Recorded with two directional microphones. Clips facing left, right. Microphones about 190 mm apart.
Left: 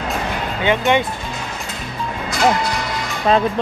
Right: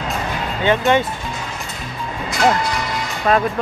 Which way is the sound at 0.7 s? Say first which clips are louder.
Right 1 dB; 15° left (ahead or behind).